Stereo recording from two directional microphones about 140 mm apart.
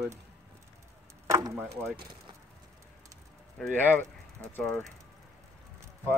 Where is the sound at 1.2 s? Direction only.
25° right (ahead or behind).